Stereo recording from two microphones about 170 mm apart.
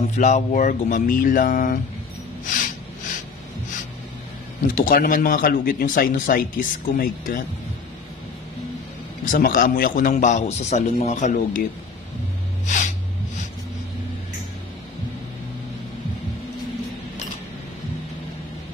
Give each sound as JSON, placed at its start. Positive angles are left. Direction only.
{"t": 0.1, "sound": "speech", "side_deg": 45}
{"t": 2.4, "sound": "a sound", "side_deg": 50}
{"t": 4.7, "sound": "a man's voice", "side_deg": 55}
{"t": 9.2, "sound": "speech", "side_deg": 55}
{"t": 12.6, "sound": "gasp", "side_deg": 45}